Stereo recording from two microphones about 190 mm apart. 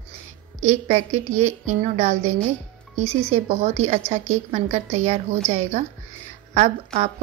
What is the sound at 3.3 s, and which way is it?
A woman's voice, 35° right (ahead or behind).